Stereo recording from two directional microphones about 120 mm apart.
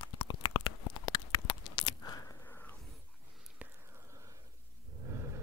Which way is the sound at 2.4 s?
15° left (ahead or behind).